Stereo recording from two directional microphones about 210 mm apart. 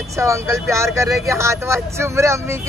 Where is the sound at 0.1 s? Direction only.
15° right (ahead or behind).